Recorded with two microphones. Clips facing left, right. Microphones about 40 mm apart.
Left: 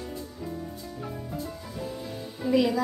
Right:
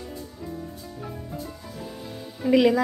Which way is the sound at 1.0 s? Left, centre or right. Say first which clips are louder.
Even; centre.